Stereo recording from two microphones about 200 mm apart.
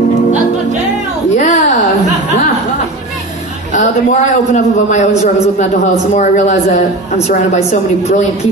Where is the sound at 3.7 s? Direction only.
35° left (ahead or behind).